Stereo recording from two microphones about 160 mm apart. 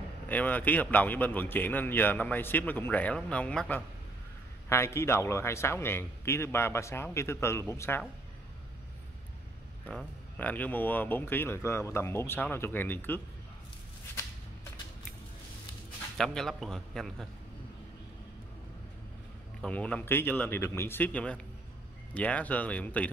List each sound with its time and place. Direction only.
0.3 s a man's voice: 10° left (ahead or behind)
9.8 s a man's voice: 10° left (ahead or behind)
16.2 s a man's voice: centre (ahead or behind)
19.6 s a man's voice: 5° left (ahead or behind)